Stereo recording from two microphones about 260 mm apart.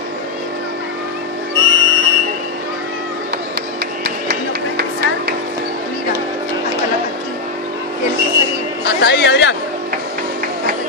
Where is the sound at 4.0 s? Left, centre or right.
Right.